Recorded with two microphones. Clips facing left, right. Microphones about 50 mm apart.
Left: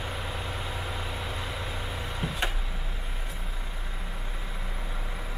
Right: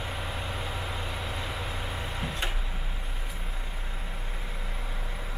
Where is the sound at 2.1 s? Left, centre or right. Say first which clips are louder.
Left 4 dB; centre.